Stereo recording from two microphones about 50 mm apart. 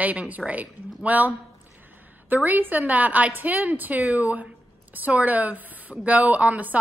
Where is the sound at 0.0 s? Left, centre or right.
Right.